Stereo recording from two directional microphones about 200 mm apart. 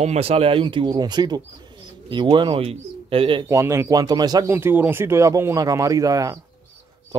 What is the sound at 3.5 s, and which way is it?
Speech, 15° right (ahead or behind).